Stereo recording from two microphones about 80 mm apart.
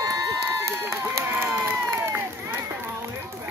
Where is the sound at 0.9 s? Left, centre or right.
Right.